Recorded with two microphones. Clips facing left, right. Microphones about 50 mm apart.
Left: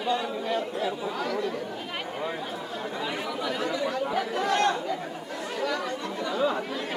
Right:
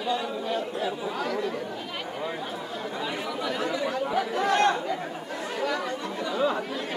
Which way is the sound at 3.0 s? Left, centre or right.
Centre.